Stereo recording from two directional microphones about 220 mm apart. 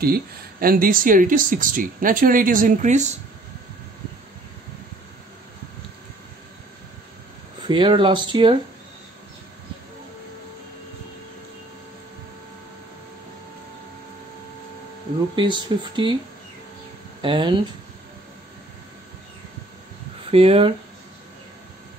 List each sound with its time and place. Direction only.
0.0 s speech: 45° right (ahead or behind)
7.6 s speech: 20° right (ahead or behind)
15.3 s speech: 20° right (ahead or behind)
17.2 s speech: 20° right (ahead or behind)
20.2 s speech: 25° right (ahead or behind)